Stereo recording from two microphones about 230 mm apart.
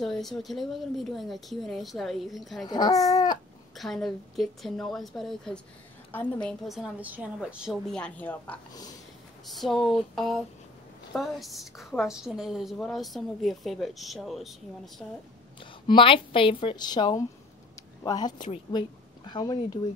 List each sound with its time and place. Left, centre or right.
0.0 s a woman's voice: centre
2.6 s speech: centre
3.7 s a woman's voice: centre
9.5 s a woman's voice: centre
15.6 s speech: left